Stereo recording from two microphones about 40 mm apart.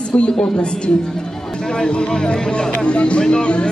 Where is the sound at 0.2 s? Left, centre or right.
Left.